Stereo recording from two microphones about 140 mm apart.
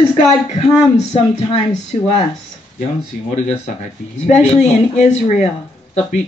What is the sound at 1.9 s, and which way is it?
Speech, 50° left (ahead or behind).